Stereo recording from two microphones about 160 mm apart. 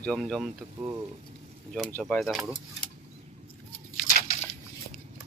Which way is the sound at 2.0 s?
Centre (ahead or behind).